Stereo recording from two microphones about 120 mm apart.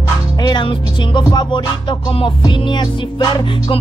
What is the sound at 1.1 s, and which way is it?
Music, 35° left (ahead or behind).